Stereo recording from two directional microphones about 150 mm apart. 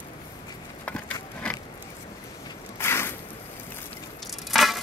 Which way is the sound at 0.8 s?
10° left (ahead or behind).